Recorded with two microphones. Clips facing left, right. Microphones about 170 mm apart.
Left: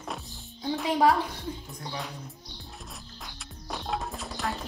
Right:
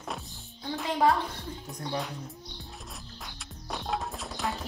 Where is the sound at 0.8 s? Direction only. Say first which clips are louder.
Left 2 dB; 15° left (ahead or behind).